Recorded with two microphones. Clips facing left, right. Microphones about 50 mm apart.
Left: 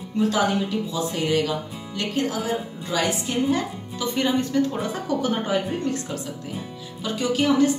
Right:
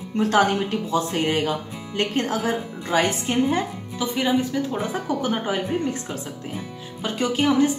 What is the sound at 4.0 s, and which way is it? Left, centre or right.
A woman's voice, centre.